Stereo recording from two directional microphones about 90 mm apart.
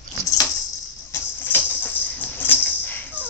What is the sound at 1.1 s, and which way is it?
Music, 20° left (ahead or behind).